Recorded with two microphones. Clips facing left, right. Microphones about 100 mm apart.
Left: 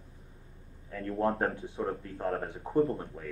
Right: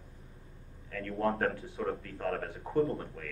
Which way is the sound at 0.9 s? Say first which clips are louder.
Left 2 dB; 20° left (ahead or behind).